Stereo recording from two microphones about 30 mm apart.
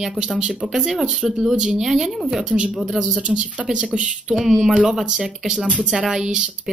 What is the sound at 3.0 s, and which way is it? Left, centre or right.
Speech, right.